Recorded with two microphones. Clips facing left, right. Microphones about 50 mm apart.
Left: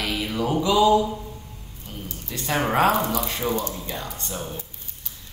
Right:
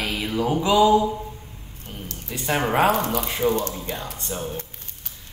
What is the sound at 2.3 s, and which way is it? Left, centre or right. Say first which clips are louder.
Speech: right 1 dB; centre.